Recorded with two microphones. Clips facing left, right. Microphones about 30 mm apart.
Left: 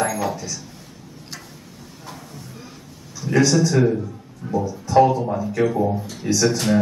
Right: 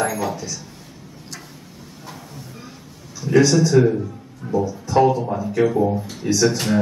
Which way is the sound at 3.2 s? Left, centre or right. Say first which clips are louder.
Right 2 dB; centre.